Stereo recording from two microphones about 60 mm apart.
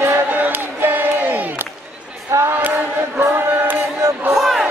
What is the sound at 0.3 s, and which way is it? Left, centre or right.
Crowd, right.